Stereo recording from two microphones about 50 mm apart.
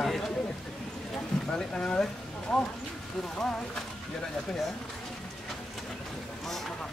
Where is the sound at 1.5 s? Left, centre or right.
Centre.